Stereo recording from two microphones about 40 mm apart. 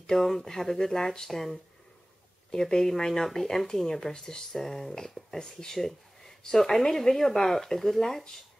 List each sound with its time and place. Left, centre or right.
0.0 s speech: centre
5.8 s a sound: centre
6.6 s speech: centre